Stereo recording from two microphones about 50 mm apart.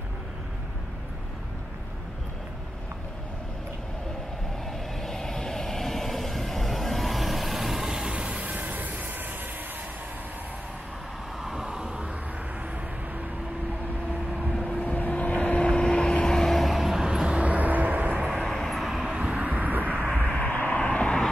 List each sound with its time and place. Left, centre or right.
5.0 s vehicle: centre; by 9.3 s right
11.4 s vehicle: centre
14.7 s vehicle: left; by 18.2 s right
18.4 s vehicle: centre
19.1 s vehicle: right
20.2 s vehicle: left